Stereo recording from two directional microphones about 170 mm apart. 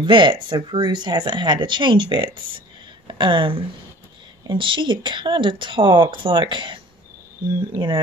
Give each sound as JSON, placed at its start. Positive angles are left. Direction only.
{"t": 0.0, "sound": "speech", "side_deg": -30}